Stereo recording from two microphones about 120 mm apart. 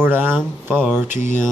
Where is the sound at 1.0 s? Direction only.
90° left.